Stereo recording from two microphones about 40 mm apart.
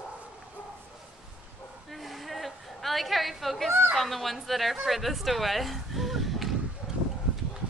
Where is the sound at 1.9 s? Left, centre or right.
Centre.